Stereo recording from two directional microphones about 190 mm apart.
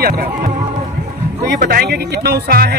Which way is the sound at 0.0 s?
55° right (ahead or behind).